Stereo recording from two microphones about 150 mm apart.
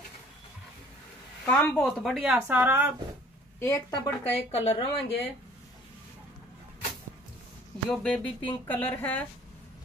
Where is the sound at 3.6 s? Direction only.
25° left (ahead or behind).